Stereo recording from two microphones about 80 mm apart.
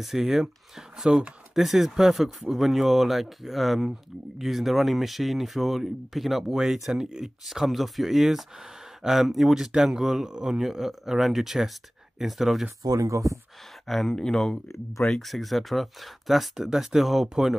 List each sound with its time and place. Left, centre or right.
0.0 s speech: centre
12.8 s speech: right
13.8 s speech: centre